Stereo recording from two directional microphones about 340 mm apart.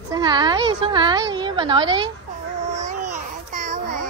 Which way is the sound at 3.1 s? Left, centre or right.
Right.